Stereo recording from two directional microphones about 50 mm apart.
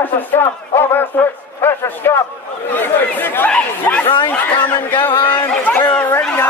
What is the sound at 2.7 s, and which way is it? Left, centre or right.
Speech, left.